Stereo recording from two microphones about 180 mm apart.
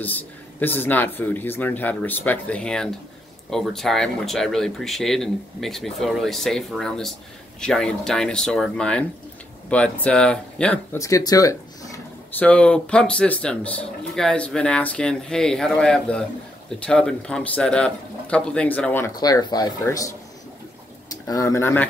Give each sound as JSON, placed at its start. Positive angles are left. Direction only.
{"t": 0.0, "sound": "speech", "side_deg": 10}
{"t": 12.4, "sound": "speech", "side_deg": 5}